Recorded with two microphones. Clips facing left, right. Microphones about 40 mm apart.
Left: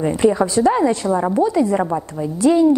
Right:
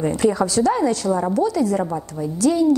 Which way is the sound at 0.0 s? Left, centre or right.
Left.